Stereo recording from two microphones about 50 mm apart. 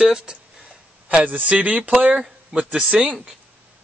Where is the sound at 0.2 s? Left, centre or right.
Centre.